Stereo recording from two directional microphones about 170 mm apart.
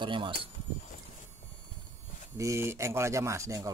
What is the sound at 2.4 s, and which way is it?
Speech, 15° right (ahead or behind).